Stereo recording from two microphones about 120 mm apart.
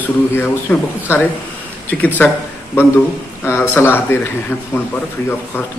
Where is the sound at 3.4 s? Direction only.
20° left (ahead or behind).